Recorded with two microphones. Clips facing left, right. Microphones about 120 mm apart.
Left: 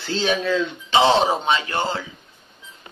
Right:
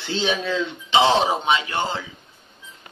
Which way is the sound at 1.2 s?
10° right (ahead or behind).